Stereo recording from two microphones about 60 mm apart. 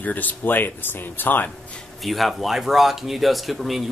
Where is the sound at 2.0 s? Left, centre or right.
Centre.